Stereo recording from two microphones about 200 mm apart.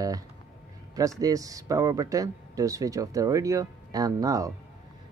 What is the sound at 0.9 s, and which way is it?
Speech, 15° right (ahead or behind).